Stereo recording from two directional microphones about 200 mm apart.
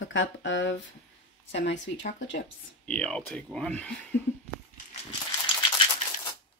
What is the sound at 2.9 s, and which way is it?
Speech, 5° left (ahead or behind).